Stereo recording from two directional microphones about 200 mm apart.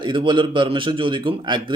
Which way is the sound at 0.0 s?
25° right (ahead or behind).